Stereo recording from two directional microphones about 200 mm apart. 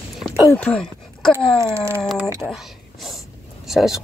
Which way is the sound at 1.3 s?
15° right (ahead or behind).